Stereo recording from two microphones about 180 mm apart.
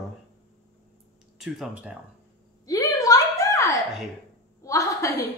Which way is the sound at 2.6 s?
20° left (ahead or behind).